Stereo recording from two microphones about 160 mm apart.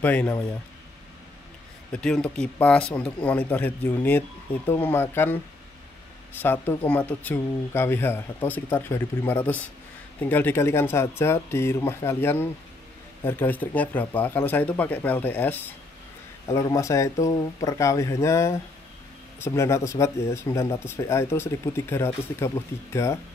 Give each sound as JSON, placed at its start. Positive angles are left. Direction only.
{"t": 0.0, "sound": "speech", "side_deg": 10}
{"t": 1.9, "sound": "speech", "side_deg": 5}
{"t": 6.4, "sound": "speech", "side_deg": 15}